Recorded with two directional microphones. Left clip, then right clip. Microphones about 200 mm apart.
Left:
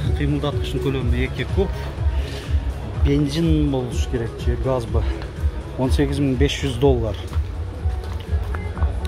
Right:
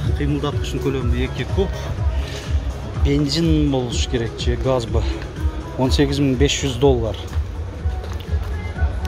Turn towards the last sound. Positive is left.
turn(degrees=-5)  # may be behind; listen again after turning